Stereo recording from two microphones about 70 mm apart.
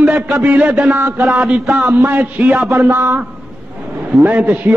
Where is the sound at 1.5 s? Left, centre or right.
Right.